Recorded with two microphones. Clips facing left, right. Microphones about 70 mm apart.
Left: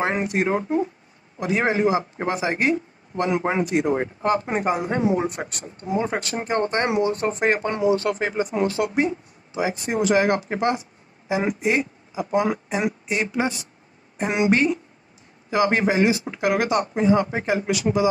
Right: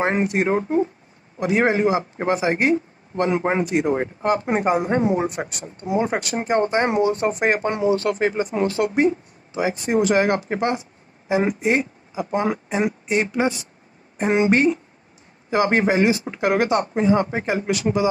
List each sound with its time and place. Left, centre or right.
0.0 s speech: right
7.9 s speech: right